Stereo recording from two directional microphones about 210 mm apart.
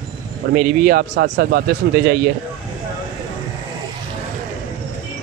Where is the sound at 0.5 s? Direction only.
45° right (ahead or behind).